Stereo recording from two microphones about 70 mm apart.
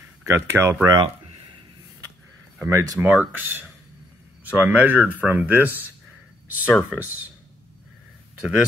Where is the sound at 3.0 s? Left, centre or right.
Right.